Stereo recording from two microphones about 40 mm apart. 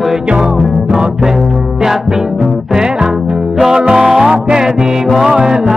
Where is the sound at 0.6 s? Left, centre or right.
Centre.